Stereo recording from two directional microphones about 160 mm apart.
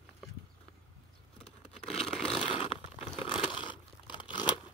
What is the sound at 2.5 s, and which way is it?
Crumpling, 35° left (ahead or behind).